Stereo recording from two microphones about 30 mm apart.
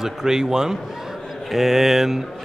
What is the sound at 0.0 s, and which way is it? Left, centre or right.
A man's voice, centre.